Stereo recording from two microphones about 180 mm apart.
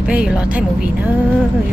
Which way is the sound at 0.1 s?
10° right (ahead or behind).